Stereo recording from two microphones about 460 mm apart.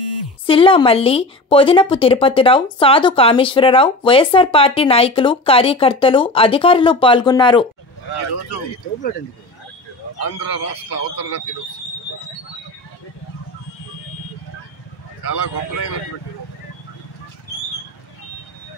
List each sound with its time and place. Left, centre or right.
0.5 s a woman's voice: centre
10.1 s a man's voice: left
15.2 s a man's voice: left